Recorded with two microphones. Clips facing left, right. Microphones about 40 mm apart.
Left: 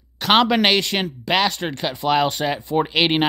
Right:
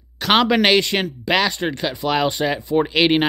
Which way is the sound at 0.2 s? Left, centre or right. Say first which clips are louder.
Even; centre.